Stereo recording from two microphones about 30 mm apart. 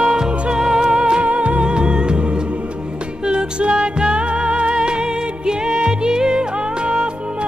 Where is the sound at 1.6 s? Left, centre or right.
Right.